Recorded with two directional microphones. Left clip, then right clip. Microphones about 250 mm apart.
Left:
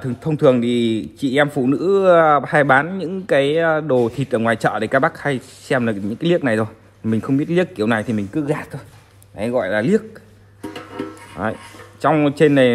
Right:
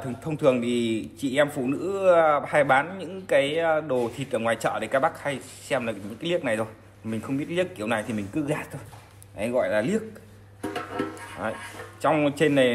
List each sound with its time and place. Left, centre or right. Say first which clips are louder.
0.0 s a man's voice: left 7 dB; left
10.6 s music: left 1 dB; centre
11.4 s a man's voice: left 7 dB; left